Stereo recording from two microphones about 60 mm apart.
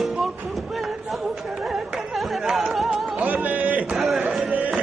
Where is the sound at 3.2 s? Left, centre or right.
Right.